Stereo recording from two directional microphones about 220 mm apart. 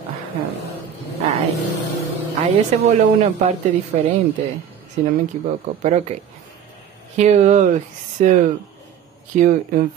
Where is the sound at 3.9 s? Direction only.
30° right (ahead or behind).